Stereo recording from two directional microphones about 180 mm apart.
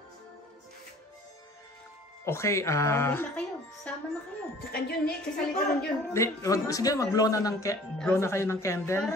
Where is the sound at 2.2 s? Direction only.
15° left (ahead or behind).